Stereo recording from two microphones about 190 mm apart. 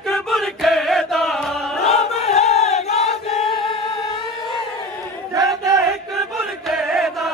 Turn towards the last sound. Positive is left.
turn(degrees=0)  # may be behind; listen again after turning